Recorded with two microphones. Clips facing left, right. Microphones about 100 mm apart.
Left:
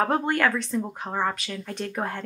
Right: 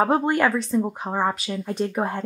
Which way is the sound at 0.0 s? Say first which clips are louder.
Right 3 dB; 15° right (ahead or behind).